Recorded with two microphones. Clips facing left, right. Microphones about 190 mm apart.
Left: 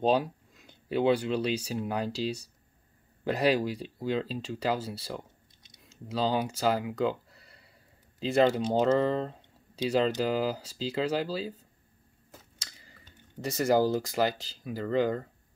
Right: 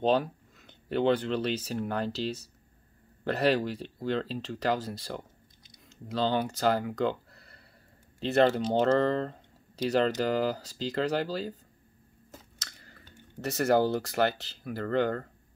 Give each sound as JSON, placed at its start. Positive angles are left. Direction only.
{"t": 0.0, "sound": "speech", "side_deg": 10}
{"t": 13.6, "sound": "speech", "side_deg": 10}